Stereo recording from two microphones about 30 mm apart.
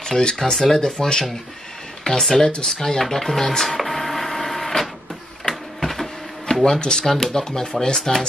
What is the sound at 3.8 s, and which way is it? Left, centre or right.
Printer, centre.